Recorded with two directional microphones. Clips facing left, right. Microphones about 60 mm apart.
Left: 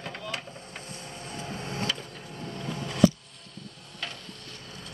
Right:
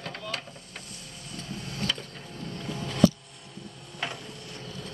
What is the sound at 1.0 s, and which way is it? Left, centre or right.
Vehicle, left.